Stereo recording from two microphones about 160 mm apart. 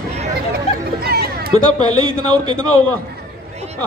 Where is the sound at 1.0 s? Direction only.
80° right.